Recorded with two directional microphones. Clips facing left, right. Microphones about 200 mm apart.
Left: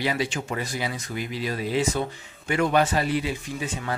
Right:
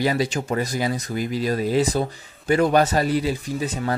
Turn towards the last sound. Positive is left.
turn(degrees=-40)  # may be behind; listen again after turning